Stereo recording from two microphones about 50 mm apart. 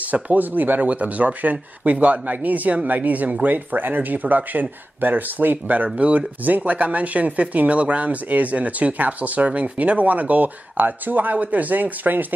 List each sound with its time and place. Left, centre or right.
0.1 s speech: right